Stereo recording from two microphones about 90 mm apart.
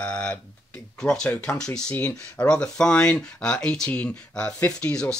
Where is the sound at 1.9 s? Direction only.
20° left (ahead or behind).